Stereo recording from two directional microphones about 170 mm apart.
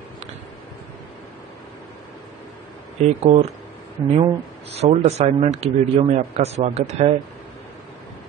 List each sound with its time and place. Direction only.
3.0 s speech: 40° right (ahead or behind)